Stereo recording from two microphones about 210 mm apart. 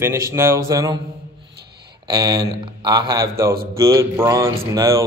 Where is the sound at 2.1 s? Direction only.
20° right (ahead or behind).